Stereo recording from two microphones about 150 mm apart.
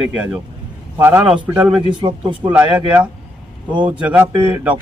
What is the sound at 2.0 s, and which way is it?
Speech, 30° right (ahead or behind).